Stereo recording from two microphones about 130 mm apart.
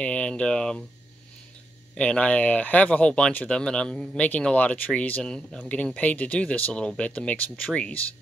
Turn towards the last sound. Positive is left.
turn(degrees=10)  # may be behind; listen again after turning